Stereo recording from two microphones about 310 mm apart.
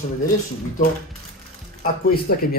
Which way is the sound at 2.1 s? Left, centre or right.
Left.